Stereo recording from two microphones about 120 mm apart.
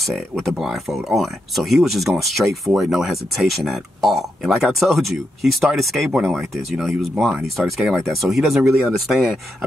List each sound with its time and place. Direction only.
0.1 s speech: centre (ahead or behind)